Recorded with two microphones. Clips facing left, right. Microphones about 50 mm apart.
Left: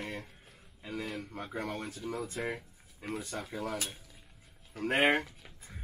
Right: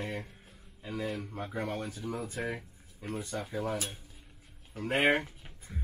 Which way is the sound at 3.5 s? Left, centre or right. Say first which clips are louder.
Right 3 dB; right.